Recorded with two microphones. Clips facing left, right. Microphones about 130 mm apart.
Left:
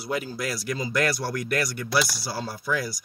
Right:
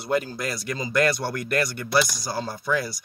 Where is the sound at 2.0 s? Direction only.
20° right (ahead or behind).